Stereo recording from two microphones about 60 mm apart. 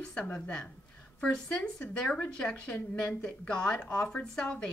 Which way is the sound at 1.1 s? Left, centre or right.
Centre.